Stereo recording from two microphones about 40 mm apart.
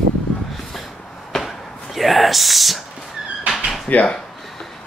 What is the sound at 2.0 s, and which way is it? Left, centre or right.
Speech, centre.